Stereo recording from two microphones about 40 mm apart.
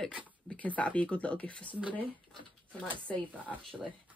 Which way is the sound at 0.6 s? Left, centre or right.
Left.